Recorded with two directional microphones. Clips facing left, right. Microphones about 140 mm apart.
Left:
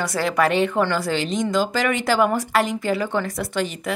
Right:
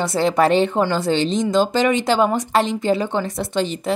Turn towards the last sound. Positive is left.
turn(degrees=-25)  # may be behind; listen again after turning